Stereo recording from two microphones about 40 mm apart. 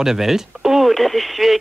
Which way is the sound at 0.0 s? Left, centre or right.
Centre.